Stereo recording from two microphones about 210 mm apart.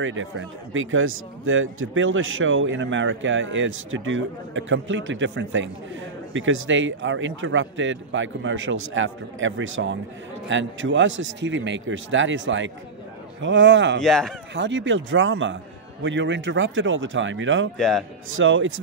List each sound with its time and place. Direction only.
0.0 s speech: 65° right (ahead or behind)
14.0 s speech: centre (ahead or behind)
14.5 s speech: 60° right (ahead or behind)
17.7 s speech: centre (ahead or behind)
18.3 s speech: 65° right (ahead or behind)